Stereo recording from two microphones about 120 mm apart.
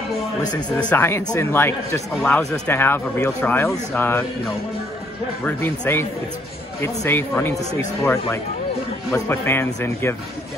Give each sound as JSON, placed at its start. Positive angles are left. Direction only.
{"t": 0.7, "sound": "speech", "side_deg": 10}
{"t": 5.4, "sound": "speech", "side_deg": 15}